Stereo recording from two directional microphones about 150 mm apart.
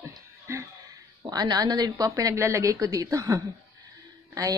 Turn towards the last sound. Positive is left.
turn(degrees=-25)  # may be behind; listen again after turning